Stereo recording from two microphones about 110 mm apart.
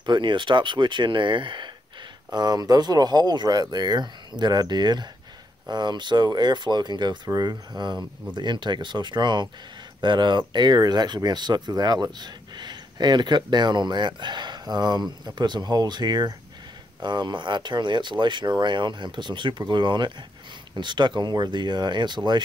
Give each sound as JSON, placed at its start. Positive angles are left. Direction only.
{"t": 0.0, "sound": "speech", "side_deg": -45}